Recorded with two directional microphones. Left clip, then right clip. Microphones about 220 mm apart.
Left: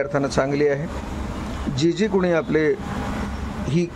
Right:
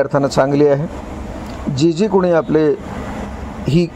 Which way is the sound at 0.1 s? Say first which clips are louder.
Right 7 dB; 15° right (ahead or behind).